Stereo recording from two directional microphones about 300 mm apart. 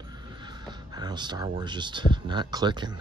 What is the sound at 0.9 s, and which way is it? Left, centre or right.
Speech, centre.